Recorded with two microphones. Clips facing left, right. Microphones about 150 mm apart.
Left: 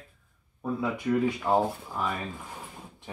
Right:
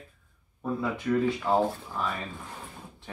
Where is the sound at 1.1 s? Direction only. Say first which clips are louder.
Even; 10° left (ahead or behind).